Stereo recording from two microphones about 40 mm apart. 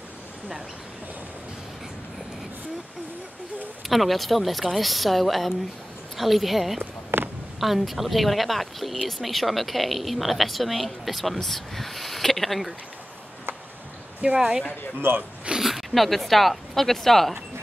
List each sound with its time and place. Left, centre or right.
3.8 s speech: centre
6.8 s a sound: right
7.6 s speech: centre
14.2 s speech: right
15.1 s speech: right
15.6 s speech: centre